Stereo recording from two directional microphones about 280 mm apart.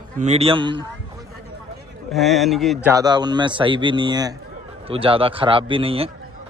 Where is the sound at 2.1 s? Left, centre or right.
Centre.